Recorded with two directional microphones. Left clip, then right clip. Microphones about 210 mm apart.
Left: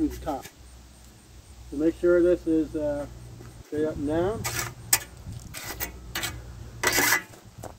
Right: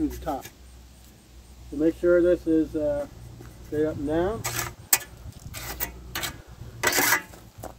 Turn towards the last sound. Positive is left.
turn(degrees=-15)  # may be behind; listen again after turning